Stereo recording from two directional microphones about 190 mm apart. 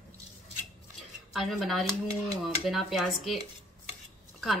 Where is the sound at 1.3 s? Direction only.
Centre (ahead or behind).